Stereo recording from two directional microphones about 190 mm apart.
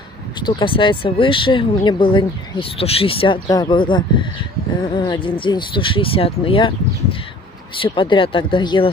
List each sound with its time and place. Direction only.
0.4 s speech: 25° left (ahead or behind)